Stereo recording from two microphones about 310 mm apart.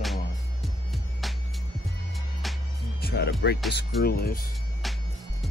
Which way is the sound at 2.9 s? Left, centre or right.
Left.